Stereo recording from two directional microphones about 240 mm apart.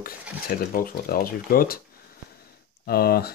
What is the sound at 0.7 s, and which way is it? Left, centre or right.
Speech, left.